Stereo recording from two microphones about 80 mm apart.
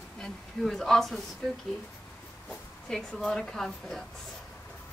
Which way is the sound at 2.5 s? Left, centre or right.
Centre.